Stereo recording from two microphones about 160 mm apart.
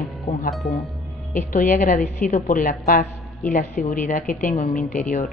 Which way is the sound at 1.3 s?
60° left (ahead or behind).